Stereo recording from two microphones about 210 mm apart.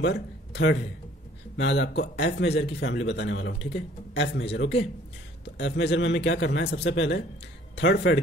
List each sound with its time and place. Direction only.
0.0 s a man's voice: 55° left (ahead or behind)